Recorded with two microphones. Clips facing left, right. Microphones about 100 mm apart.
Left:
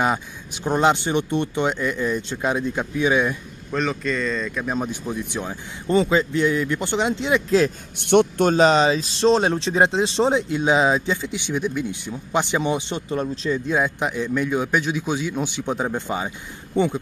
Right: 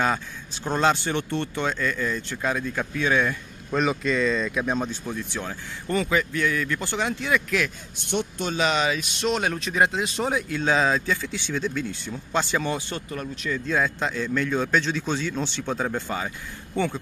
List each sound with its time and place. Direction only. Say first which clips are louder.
0.7 s speech: left 3 dB; 20° left (ahead or behind)
3.7 s speech: even; 5° right (ahead or behind)
4.7 s speech: left 3 dB; 15° left (ahead or behind); by 7.7 s 30° left (ahead or behind)
8.0 s a man's voice: left 11 dB; 65° left (ahead or behind)
8.5 s speech: left 8 dB; 35° left (ahead or behind)
13.7 s speech: even; 15° left (ahead or behind)